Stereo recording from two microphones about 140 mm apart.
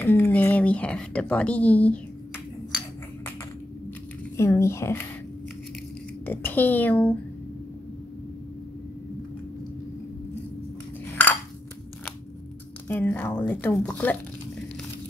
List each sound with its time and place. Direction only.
0.0 s speech: 10° left (ahead or behind)
4.4 s speech: 20° left (ahead or behind)
6.2 s speech: 15° left (ahead or behind)
12.8 s speech: 15° left (ahead or behind)